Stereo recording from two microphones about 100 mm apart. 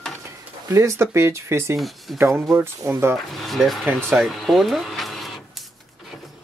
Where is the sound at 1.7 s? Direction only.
Centre (ahead or behind).